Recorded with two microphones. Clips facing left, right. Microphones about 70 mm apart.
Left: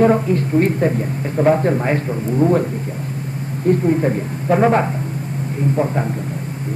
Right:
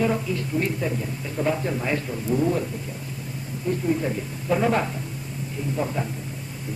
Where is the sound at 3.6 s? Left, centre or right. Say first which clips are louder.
Left 9 dB; left.